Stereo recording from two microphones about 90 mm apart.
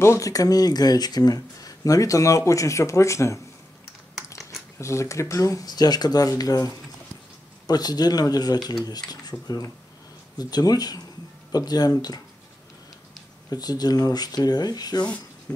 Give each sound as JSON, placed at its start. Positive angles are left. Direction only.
{"t": 0.0, "sound": "speech", "side_deg": 35}
{"t": 4.5, "sound": "speech", "side_deg": 35}
{"t": 13.5, "sound": "speech", "side_deg": 45}